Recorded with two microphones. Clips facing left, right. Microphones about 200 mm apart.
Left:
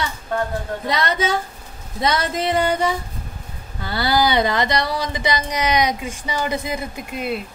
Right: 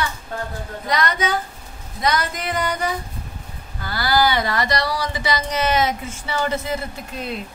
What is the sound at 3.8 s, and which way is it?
Speech, 25° left (ahead or behind).